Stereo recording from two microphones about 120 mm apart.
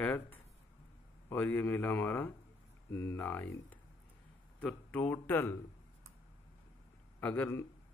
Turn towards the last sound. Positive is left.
turn(degrees=15)  # may be behind; listen again after turning